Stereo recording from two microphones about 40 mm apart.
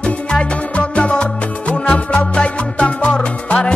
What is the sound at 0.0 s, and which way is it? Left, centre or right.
Music, left.